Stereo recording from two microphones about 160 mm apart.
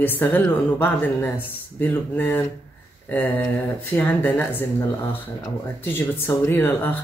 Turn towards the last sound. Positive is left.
turn(degrees=10)  # may be behind; listen again after turning